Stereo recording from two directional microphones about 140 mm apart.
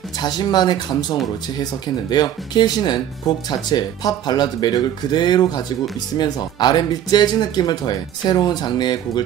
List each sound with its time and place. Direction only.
0.2 s speech: 30° left (ahead or behind)